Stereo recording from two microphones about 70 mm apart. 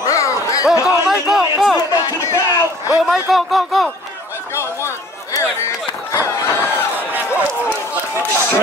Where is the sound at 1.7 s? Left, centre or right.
Left.